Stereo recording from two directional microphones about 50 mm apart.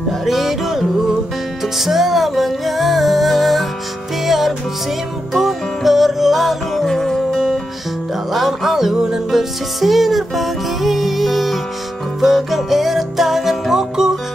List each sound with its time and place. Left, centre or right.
0.2 s music: centre